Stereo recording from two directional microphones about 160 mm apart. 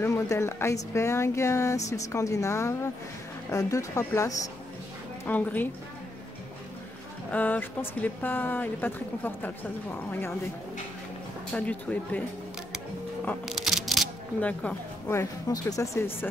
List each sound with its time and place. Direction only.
0.0 s a woman's voice: 15° left (ahead or behind)
7.2 s speech: 10° left (ahead or behind)
11.5 s speech: 10° left (ahead or behind)
13.5 s speech: centre (ahead or behind); by 16.3 s 15° left (ahead or behind)